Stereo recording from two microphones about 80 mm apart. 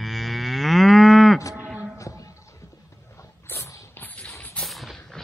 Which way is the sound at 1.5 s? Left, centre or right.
Centre.